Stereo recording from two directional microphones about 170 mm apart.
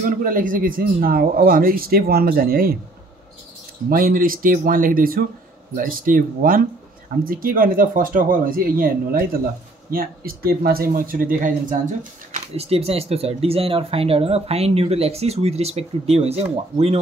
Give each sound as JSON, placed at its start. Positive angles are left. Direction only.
{"t": 0.0, "sound": "speech", "side_deg": -50}
{"t": 3.9, "sound": "speech", "side_deg": -60}